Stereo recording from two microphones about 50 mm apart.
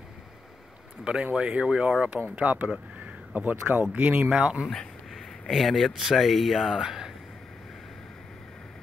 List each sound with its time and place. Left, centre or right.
1.0 s speech: right
4.3 s speech: centre
5.1 s speech: centre